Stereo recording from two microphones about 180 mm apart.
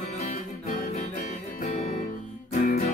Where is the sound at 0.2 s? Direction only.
40° left (ahead or behind).